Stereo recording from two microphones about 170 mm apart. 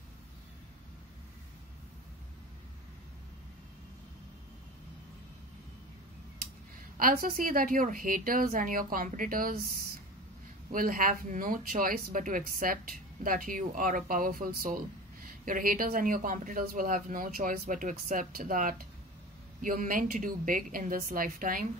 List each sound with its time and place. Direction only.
7.0 s a woman's voice: 60° right (ahead or behind)
10.7 s speech: 55° right (ahead or behind)